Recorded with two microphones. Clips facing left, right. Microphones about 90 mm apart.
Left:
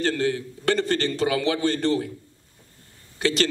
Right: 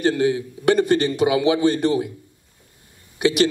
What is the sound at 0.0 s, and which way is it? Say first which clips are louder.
Speech: right 5 dB; 15° right (ahead or behind).